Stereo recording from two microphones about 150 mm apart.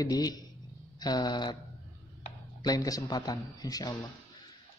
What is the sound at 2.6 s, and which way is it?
Speech, 25° left (ahead or behind).